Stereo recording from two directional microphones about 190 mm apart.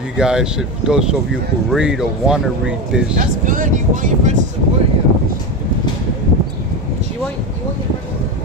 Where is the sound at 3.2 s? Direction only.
45° right (ahead or behind).